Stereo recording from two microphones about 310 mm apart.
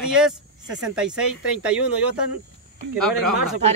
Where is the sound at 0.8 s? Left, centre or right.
Centre.